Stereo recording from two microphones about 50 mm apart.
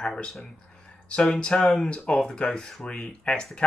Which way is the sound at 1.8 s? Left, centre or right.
Centre.